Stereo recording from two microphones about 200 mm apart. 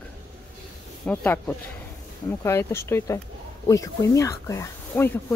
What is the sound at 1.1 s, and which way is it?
A woman's voice, 10° left (ahead or behind).